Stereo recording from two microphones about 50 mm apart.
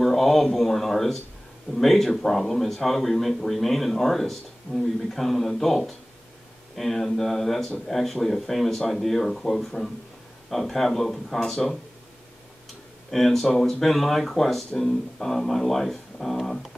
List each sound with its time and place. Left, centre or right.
0.0 s speech: centre
13.1 s speech: centre